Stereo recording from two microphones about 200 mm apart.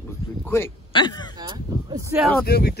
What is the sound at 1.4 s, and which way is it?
Speech, 20° right (ahead or behind).